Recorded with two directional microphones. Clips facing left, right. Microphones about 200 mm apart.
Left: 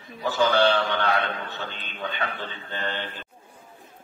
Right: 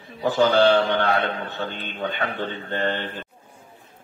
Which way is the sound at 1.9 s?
35° right (ahead or behind).